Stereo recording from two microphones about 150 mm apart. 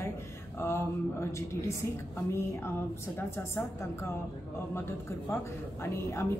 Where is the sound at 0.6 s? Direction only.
15° left (ahead or behind).